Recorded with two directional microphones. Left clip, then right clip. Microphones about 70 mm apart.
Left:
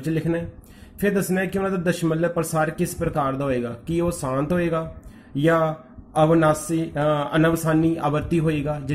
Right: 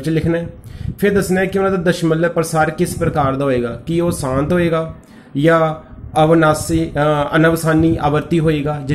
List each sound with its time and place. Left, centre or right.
0.0 s a man's voice: centre